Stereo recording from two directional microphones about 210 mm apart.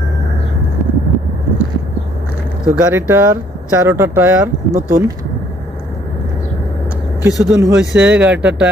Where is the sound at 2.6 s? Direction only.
5° right (ahead or behind).